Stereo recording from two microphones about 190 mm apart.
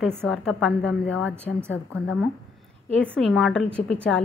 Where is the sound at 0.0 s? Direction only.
Centre (ahead or behind).